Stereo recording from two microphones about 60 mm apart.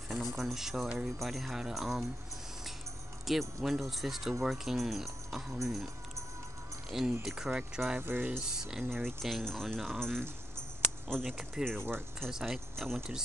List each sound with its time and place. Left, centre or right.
0.1 s speech: centre
0.8 s speech: centre
1.2 s speech: centre
3.3 s speech: centre
6.9 s speech: centre
8.0 s speech: right
8.5 s speech: centre
8.9 s speech: centre
11.6 s speech: centre
12.7 s speech: centre